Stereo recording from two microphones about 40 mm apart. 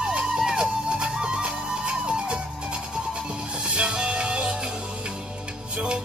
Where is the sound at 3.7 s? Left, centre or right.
Right.